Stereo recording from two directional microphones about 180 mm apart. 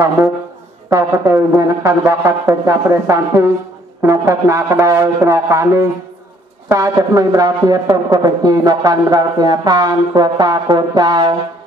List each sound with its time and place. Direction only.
0.9 s speech: 15° right (ahead or behind)